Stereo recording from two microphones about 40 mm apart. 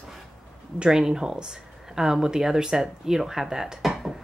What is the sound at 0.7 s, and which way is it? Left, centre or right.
A woman's voice, centre.